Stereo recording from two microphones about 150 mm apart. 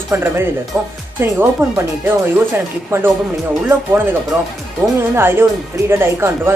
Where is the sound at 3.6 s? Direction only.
15° right (ahead or behind).